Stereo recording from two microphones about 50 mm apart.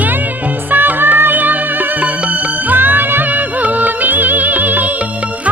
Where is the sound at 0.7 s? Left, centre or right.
Right.